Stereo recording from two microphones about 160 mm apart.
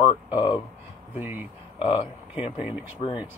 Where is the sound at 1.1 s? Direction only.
15° right (ahead or behind).